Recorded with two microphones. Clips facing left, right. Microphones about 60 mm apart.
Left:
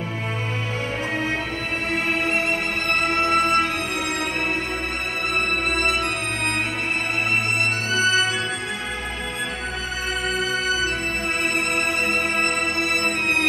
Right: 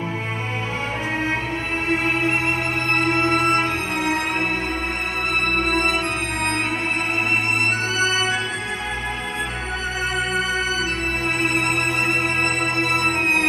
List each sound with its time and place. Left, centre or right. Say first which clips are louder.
1.9 s music: right 3 dB; right
5.8 s music: right 1 dB; right
8.0 s music: left 2 dB; right
12.1 s music: right 1 dB; right